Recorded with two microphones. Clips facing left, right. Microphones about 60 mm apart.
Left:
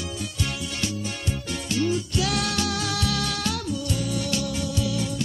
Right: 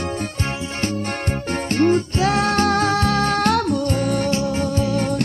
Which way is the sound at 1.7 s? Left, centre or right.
Right.